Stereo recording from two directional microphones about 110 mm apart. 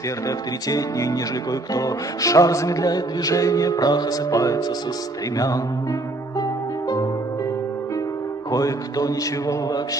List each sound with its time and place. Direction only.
0.7 s music: 30° left (ahead or behind)
8.5 s music: 35° left (ahead or behind)